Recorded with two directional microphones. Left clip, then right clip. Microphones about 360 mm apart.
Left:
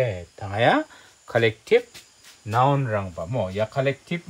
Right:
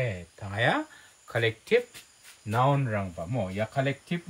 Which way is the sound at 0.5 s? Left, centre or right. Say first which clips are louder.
Left 7 dB; centre.